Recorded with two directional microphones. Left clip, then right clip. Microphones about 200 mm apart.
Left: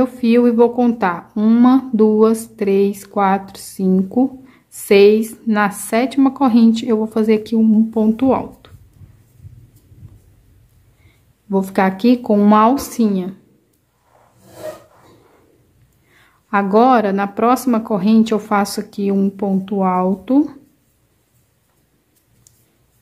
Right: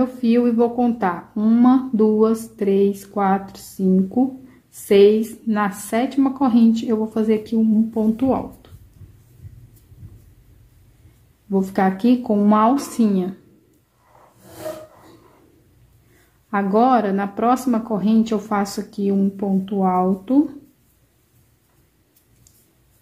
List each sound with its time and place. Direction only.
0.0 s speech: 20° left (ahead or behind)
11.5 s speech: 20° left (ahead or behind)
16.4 s speech: 20° left (ahead or behind)